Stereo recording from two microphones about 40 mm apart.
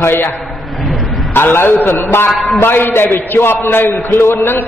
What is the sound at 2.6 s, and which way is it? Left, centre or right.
A man's voice, left.